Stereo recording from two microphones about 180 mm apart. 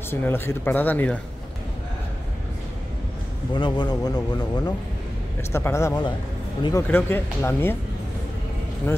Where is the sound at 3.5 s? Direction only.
25° left (ahead or behind).